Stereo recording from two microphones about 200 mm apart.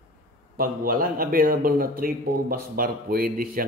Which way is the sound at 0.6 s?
45° right (ahead or behind).